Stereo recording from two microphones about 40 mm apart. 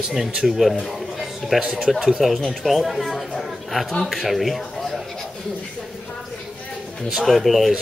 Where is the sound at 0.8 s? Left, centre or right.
Centre.